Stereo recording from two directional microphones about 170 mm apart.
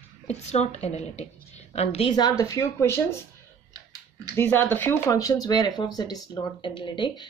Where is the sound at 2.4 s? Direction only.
20° left (ahead or behind).